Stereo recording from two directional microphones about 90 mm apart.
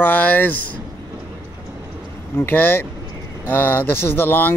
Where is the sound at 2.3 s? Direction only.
20° left (ahead or behind).